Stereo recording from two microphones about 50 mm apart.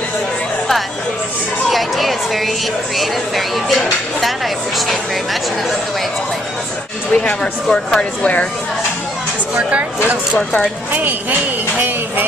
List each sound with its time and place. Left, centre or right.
1.7 s music: centre
3.0 s speech: centre
7.1 s speech: centre
9.6 s speech: right
10.9 s speech: right